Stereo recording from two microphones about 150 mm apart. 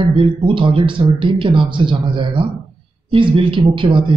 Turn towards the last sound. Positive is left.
turn(degrees=-35)  # may be behind; listen again after turning